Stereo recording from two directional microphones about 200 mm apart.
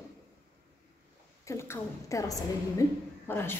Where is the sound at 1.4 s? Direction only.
15° left (ahead or behind).